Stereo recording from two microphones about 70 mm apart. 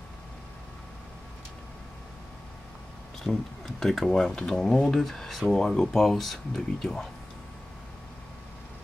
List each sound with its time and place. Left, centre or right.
3.3 s speech: centre